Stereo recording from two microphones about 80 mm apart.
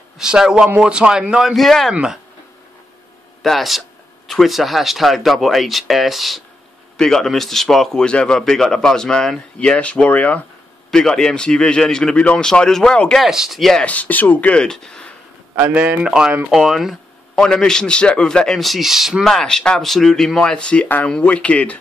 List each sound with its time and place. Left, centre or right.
0.2 s a man's voice: centre
3.4 s a man's voice: centre
13.2 s speech: centre
13.8 s a man's voice: centre
15.7 s a man's voice: centre
17.4 s a man's voice: centre
19.2 s a man's voice: centre